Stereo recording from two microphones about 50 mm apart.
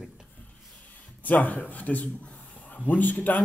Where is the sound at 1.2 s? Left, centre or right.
Left.